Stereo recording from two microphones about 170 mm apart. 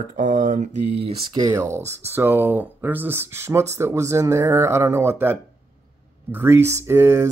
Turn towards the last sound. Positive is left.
turn(degrees=-15)  # may be behind; listen again after turning